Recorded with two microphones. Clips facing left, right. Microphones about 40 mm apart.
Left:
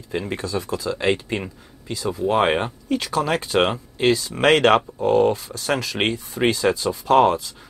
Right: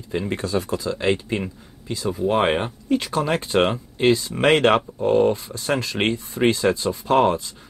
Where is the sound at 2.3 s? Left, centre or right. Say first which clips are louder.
Left 1 dB; centre.